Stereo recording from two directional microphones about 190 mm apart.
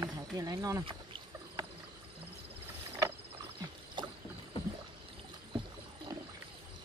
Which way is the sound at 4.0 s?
25° right (ahead or behind).